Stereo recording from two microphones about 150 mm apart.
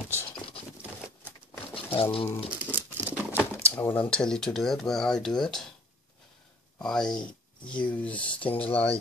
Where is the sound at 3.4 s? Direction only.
10° left (ahead or behind).